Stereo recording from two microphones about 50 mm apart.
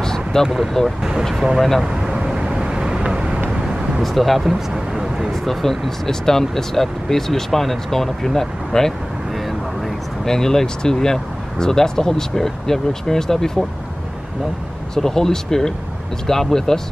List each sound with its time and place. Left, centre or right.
0.0 s vehicle: centre
0.8 s speech: centre
1.3 s speech: centre
1.8 s vehicle: centre
4.0 s speech: centre
4.4 s a sound: centre
5.3 s speech: centre
10.2 s speech: centre
15.0 s speech: centre